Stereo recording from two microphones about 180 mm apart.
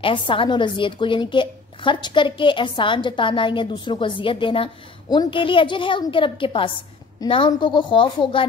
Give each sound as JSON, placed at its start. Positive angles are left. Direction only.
{"t": 0.0, "sound": "a woman's voice", "side_deg": 30}